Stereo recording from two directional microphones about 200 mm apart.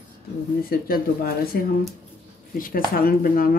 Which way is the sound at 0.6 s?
50° left (ahead or behind).